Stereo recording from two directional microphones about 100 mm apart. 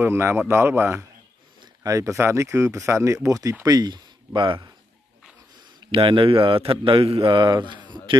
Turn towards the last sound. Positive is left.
turn(degrees=-50)  # may be behind; listen again after turning